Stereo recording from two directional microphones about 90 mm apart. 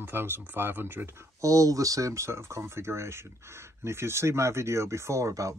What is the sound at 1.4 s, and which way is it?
Speech, 40° right (ahead or behind).